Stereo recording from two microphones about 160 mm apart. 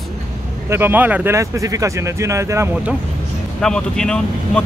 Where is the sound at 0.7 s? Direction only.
15° right (ahead or behind).